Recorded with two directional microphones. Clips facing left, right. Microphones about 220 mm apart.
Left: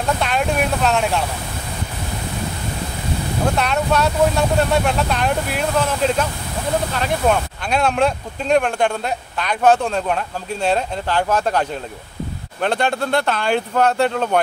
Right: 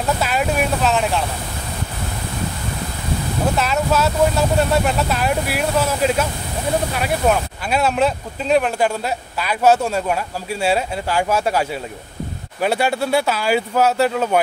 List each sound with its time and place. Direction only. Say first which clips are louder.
0.2 s speech: even; 5° right (ahead or behind)
3.5 s speech: even; centre (ahead or behind)